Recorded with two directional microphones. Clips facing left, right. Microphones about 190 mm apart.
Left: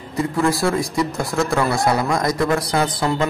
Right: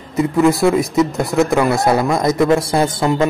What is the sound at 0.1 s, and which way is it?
A man's voice, 20° right (ahead or behind).